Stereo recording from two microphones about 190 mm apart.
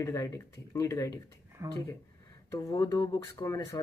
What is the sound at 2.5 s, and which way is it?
Speech, 20° left (ahead or behind).